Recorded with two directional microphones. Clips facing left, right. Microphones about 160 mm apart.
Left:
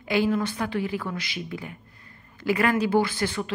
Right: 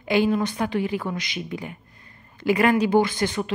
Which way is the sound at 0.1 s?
20° right (ahead or behind).